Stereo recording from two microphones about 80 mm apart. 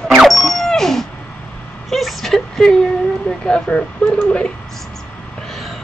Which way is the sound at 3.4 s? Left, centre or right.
Centre.